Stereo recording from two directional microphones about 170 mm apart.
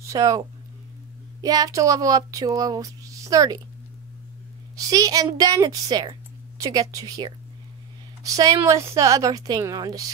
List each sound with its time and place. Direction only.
0.1 s speech: 20° right (ahead or behind)
1.4 s speech: 20° right (ahead or behind)
4.7 s a woman's voice: 20° right (ahead or behind)